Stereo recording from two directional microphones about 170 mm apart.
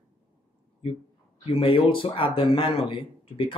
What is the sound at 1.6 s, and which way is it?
A man's voice, 30° left (ahead or behind).